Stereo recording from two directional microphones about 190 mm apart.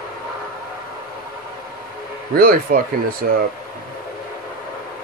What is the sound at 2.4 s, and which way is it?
Speech, 50° right (ahead or behind).